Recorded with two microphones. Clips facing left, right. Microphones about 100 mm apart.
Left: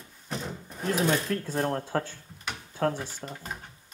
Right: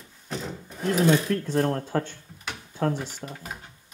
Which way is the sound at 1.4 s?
10° left (ahead or behind).